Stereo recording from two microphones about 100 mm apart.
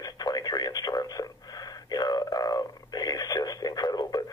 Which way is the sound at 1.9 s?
40° left (ahead or behind).